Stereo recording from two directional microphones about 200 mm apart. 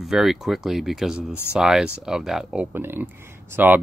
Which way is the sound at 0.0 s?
Centre (ahead or behind).